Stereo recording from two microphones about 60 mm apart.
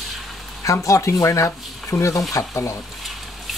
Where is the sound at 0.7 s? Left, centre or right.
Left.